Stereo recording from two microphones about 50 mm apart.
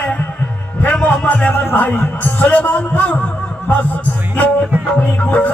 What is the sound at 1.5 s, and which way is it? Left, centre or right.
Music, left.